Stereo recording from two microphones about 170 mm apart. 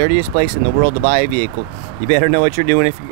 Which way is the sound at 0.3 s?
65° right (ahead or behind).